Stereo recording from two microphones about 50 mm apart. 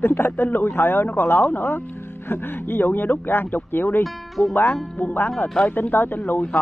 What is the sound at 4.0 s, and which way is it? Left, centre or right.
Speech, centre.